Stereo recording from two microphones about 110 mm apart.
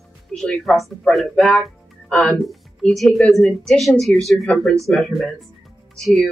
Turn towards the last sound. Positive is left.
turn(degrees=5)  # may be behind; listen again after turning